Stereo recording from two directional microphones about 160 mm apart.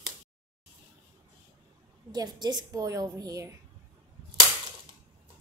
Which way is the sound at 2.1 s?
25° right (ahead or behind).